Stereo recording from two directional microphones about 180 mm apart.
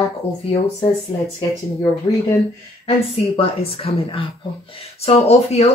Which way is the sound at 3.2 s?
30° left (ahead or behind).